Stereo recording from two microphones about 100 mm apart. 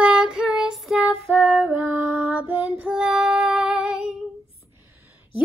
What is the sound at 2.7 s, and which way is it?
Female singing, 10° right (ahead or behind).